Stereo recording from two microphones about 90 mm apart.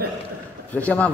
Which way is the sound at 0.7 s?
15° left (ahead or behind).